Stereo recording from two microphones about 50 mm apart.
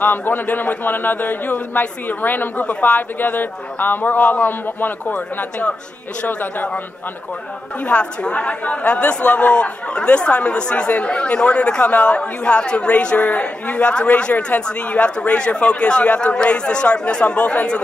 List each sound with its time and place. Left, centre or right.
0.0 s a man's voice: left
5.1 s a man's voice: left
7.8 s speech: left